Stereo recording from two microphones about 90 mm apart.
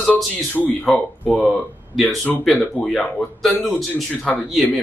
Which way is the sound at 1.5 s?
Centre (ahead or behind).